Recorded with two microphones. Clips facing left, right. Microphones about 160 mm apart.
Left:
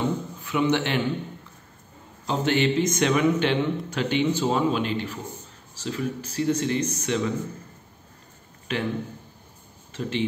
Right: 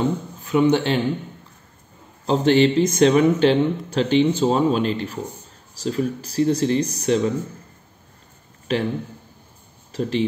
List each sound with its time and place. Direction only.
0.4 s a man's voice: 35° right (ahead or behind)
2.2 s speech: 35° right (ahead or behind)
8.7 s speech: 35° right (ahead or behind)
9.9 s speech: 35° right (ahead or behind)